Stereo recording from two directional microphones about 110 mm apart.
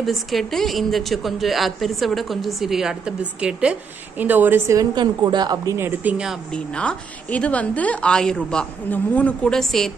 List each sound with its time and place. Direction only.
0.0 s a woman's voice: centre (ahead or behind); by 4.7 s 20° right (ahead or behind)
4.7 s a woman's voice: 40° right (ahead or behind)
5.8 s speech: 20° right (ahead or behind)
6.5 s a woman's voice: 10° left (ahead or behind)